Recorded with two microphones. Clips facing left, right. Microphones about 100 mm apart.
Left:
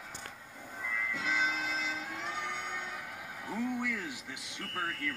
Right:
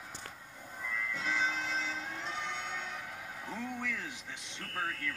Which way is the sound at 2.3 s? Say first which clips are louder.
Left 1 dB; 15° left (ahead or behind).